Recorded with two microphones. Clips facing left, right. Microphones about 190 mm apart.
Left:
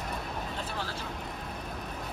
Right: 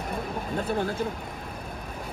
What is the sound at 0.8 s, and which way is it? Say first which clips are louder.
Speech: right 10 dB; 55° right (ahead or behind).